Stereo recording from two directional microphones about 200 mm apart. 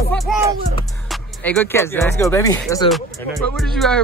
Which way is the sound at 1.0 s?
5° left (ahead or behind).